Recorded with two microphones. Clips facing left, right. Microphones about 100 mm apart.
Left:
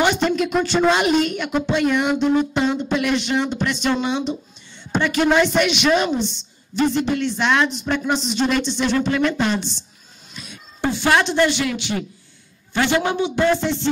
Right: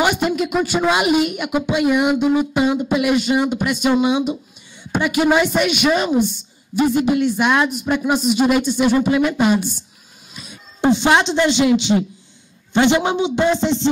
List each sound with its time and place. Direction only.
0.0 s a woman's voice: 10° right (ahead or behind)
10.3 s music: 5° right (ahead or behind)
10.8 s speech: 20° right (ahead or behind)